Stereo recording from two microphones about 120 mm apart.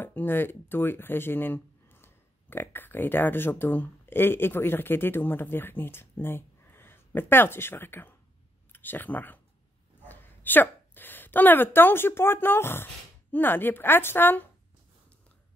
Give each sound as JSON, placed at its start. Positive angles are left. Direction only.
{"t": 0.0, "sound": "a woman's voice", "side_deg": 15}